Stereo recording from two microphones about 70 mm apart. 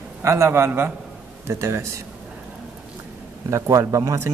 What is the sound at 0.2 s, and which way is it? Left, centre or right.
Speech, right.